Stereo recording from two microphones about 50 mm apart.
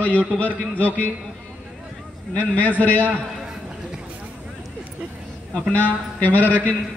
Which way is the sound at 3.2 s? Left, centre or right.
Centre.